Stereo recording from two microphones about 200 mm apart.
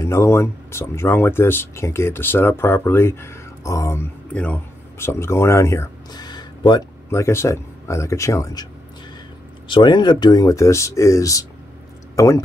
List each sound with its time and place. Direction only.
0.0 s speech: 15° left (ahead or behind)
9.7 s speech: 25° left (ahead or behind)